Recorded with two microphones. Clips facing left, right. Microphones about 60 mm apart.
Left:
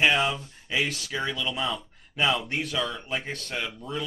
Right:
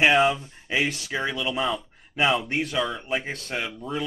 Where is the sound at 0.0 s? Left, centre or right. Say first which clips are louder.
Right 4 dB; centre.